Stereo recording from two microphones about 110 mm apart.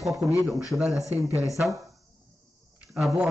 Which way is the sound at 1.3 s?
30° left (ahead or behind).